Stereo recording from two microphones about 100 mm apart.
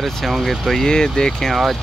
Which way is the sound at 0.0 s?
Centre (ahead or behind).